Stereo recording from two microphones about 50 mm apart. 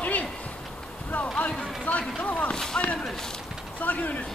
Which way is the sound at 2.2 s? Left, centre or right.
Left.